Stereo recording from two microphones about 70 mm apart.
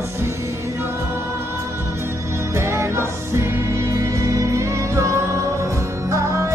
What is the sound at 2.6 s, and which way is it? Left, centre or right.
Music, right.